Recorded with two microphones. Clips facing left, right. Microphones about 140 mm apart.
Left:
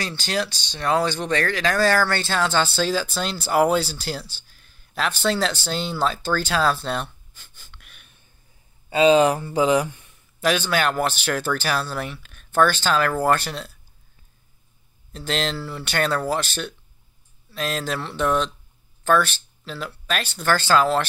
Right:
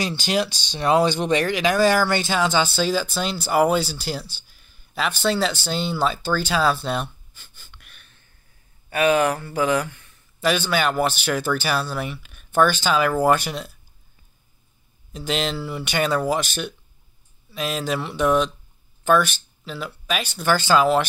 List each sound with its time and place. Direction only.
0.0 s speech: 15° right (ahead or behind); by 8.2 s 5° left (ahead or behind)
8.9 s speech: 20° left (ahead or behind)
10.4 s speech: centre (ahead or behind)
15.1 s speech: 5° right (ahead or behind)